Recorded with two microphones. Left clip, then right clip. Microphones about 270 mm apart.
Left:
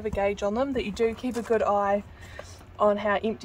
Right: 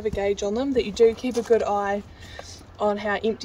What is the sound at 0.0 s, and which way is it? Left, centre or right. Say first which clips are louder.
Speech: right 2 dB; left.